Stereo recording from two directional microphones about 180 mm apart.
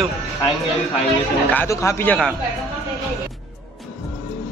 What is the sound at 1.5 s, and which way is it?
Speech, 15° left (ahead or behind).